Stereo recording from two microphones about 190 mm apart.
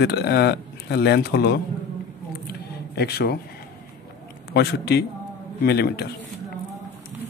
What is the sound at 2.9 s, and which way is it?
Speech, 55° left (ahead or behind).